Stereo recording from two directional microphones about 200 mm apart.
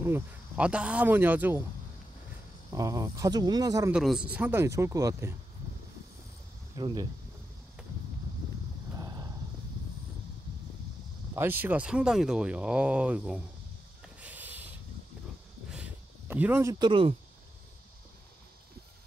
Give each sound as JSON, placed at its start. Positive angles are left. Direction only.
{"t": 0.0, "sound": "speech", "side_deg": -10}
{"t": 2.7, "sound": "speech", "side_deg": -15}
{"t": 3.9, "sound": "speech", "side_deg": -5}
{"t": 6.7, "sound": "speech", "side_deg": -20}
{"t": 8.9, "sound": "a sound", "side_deg": -20}
{"t": 11.3, "sound": "speech", "side_deg": -10}
{"t": 14.0, "sound": "a sound", "side_deg": -10}